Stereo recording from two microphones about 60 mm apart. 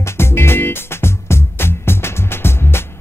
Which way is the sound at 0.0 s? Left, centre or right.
Left.